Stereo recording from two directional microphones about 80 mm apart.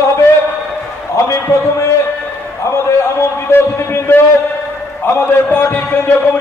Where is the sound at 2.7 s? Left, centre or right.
Left.